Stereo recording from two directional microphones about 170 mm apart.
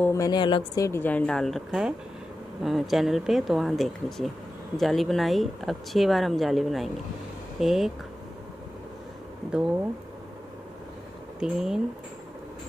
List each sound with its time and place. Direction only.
0.0 s speech: 20° left (ahead or behind)
0.8 s speech: 10° left (ahead or behind)
9.5 s speech: 5° right (ahead or behind)
11.3 s speech: 5° right (ahead or behind)